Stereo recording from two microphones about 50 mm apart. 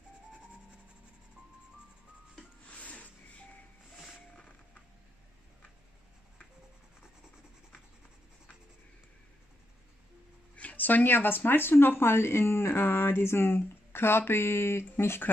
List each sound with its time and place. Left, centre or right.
2.8 s telephone dialing: left
10.5 s speech: left